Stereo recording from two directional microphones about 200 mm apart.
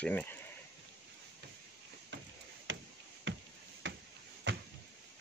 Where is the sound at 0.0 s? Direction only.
10° left (ahead or behind).